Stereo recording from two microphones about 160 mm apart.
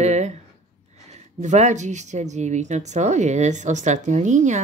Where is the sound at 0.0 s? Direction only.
45° right (ahead or behind).